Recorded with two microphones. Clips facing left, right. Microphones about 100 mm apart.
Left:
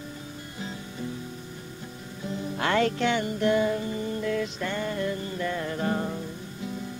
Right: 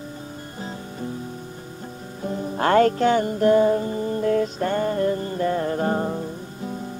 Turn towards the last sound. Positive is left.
turn(degrees=-35)  # may be behind; listen again after turning